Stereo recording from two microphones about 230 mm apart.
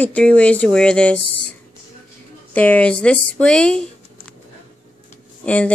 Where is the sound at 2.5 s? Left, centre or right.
Centre.